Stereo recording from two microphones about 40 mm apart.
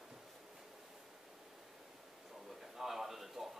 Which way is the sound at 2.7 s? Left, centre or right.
Centre.